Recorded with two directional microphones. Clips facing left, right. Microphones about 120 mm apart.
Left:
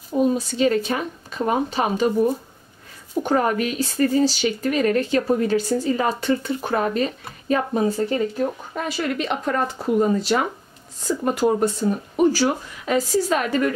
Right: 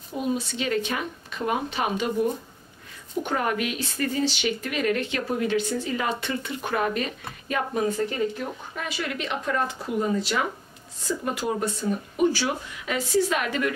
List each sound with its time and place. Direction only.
0.3 s a woman's voice: 40° left (ahead or behind)
3.3 s a woman's voice: 40° left (ahead or behind)